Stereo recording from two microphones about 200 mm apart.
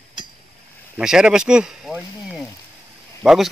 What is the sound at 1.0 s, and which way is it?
Speech, 5° right (ahead or behind).